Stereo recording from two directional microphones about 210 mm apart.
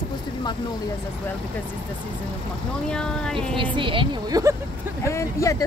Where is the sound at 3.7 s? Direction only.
25° right (ahead or behind).